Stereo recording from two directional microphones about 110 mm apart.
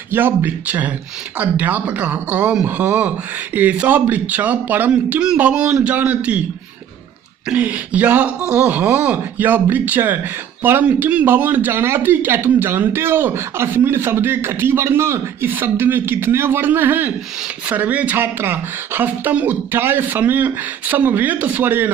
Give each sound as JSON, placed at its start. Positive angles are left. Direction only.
{"t": 0.1, "sound": "speech", "side_deg": -20}
{"t": 7.4, "sound": "speech", "side_deg": -10}